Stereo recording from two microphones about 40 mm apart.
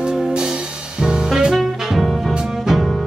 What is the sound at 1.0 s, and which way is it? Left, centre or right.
Saxophone, centre.